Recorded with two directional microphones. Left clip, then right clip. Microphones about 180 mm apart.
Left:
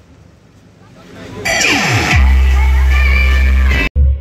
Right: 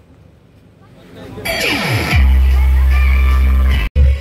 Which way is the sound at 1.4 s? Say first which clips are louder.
Left 4 dB; 45° right (ahead or behind).